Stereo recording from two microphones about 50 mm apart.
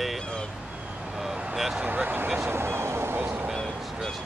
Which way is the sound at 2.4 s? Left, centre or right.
Right.